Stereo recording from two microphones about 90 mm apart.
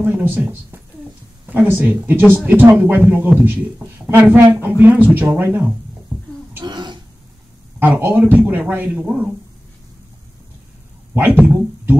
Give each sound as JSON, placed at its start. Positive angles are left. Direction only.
{"t": 0.0, "sound": "a man's voice", "side_deg": -20}
{"t": 6.6, "sound": "throat clearing", "side_deg": -55}
{"t": 7.8, "sound": "a man's voice", "side_deg": -15}
{"t": 11.1, "sound": "speech", "side_deg": -20}